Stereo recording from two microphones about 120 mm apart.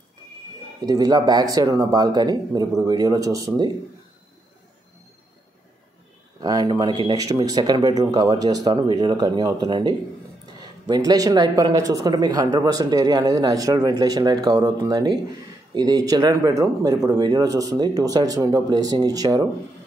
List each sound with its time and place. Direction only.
0.8 s speech: 35° right (ahead or behind)
6.4 s speech: 35° right (ahead or behind)